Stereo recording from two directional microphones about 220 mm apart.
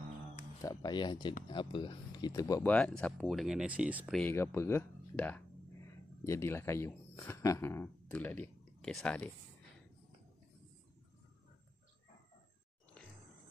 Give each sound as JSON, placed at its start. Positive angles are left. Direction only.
{"t": 0.6, "sound": "speech", "side_deg": 15}